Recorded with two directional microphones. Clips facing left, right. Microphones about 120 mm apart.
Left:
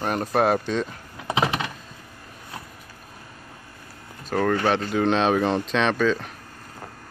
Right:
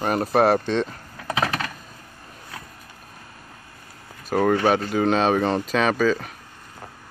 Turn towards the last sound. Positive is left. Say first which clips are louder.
# right 1 dB
turn(degrees=-5)  # may be behind; listen again after turning